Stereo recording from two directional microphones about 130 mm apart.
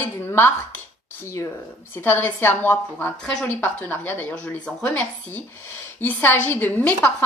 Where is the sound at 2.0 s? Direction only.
15° left (ahead or behind).